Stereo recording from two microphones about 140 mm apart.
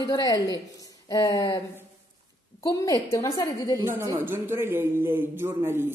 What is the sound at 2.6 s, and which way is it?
A woman's voice, 25° left (ahead or behind).